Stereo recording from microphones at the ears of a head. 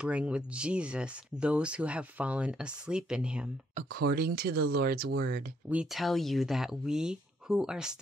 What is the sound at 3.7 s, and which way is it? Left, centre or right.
Speech, right.